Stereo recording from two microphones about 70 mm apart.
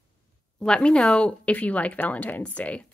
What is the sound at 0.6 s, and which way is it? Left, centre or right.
Speech, centre.